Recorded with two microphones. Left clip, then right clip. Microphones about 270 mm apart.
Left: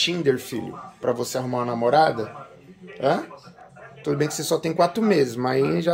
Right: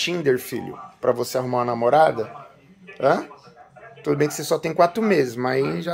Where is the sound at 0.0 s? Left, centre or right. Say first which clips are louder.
Even; centre.